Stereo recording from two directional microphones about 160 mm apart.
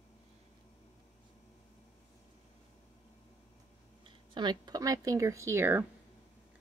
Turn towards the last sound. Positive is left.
turn(degrees=-15)  # may be behind; listen again after turning